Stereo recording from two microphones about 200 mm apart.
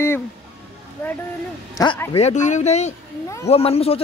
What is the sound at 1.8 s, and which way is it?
Speech, 20° left (ahead or behind).